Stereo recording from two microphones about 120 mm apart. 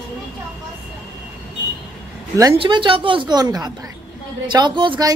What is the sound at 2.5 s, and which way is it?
A woman's voice, 45° right (ahead or behind).